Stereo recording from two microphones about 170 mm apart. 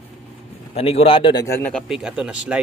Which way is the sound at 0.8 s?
35° left (ahead or behind).